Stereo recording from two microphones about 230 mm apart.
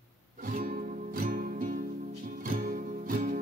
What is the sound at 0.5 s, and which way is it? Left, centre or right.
Music, right.